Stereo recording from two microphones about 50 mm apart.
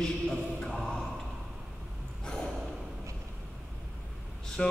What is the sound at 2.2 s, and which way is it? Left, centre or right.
Gasp, centre.